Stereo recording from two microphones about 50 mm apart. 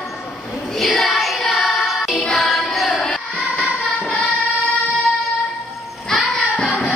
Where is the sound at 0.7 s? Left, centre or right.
Centre.